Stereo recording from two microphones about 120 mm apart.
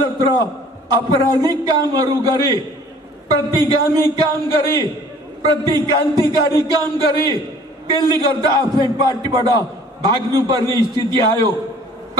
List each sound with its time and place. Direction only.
0.8 s a man's voice: 35° right (ahead or behind)